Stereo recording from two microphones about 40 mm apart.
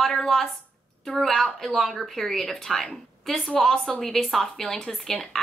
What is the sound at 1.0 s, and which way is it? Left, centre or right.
A woman's voice, centre.